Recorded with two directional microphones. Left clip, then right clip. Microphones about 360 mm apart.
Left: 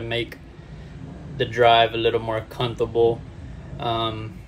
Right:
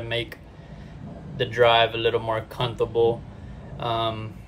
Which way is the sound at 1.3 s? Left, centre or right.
Centre.